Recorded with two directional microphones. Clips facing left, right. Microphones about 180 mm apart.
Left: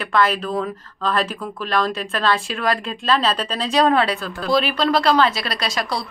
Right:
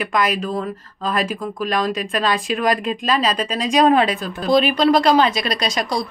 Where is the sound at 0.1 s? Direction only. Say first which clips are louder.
Left 3 dB; 15° right (ahead or behind).